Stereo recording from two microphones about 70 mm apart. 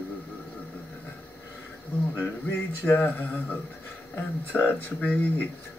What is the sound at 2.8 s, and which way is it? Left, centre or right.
Speech, left.